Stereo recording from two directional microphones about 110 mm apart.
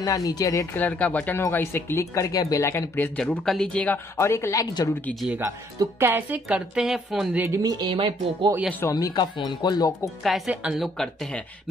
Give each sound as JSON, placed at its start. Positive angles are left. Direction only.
{"t": 0.0, "sound": "speech", "side_deg": 35}
{"t": 0.7, "sound": "speech", "side_deg": 15}
{"t": 3.2, "sound": "speech", "side_deg": 5}
{"t": 4.2, "sound": "speech", "side_deg": 25}
{"t": 5.4, "sound": "speech", "side_deg": -25}
{"t": 7.4, "sound": "speech", "side_deg": -30}
{"t": 7.9, "sound": "speech", "side_deg": -50}
{"t": 8.9, "sound": "speech", "side_deg": 35}
{"t": 10.0, "sound": "a woman's voice", "side_deg": 0}
{"t": 10.5, "sound": "speech", "side_deg": -10}